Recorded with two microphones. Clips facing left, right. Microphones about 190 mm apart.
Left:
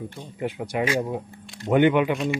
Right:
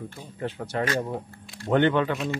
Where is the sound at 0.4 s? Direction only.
10° left (ahead or behind).